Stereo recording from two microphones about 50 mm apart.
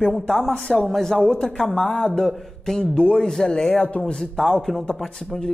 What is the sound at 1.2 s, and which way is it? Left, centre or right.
A man's voice, centre.